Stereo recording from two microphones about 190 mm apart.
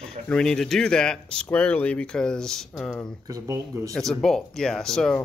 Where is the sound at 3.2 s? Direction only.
15° right (ahead or behind).